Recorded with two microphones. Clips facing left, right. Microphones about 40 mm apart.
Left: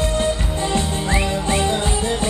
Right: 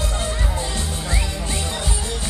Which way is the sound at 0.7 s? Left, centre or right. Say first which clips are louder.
Left 6 dB; left.